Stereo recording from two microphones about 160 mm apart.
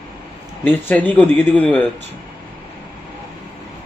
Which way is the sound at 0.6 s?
10° left (ahead or behind).